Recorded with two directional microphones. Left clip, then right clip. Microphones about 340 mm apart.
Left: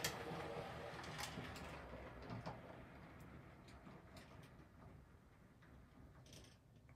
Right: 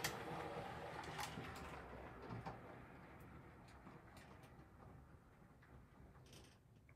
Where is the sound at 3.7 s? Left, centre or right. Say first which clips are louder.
Even; centre.